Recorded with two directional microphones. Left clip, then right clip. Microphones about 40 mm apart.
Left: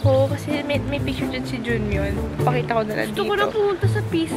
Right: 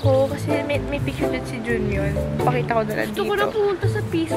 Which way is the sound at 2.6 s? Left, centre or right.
Centre.